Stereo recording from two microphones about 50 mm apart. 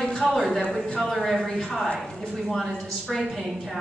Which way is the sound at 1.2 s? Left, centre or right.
Centre.